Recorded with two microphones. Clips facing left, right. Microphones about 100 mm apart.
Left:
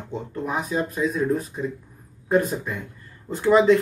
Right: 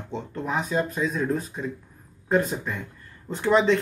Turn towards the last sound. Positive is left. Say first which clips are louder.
# left 4 dB
turn(degrees=5)  # may be behind; listen again after turning